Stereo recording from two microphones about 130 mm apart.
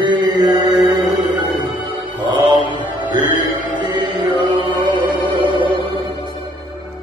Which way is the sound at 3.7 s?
35° right (ahead or behind).